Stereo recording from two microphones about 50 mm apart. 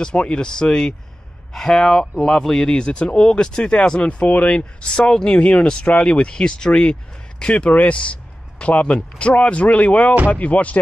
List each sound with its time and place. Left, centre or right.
0.0 s speech: left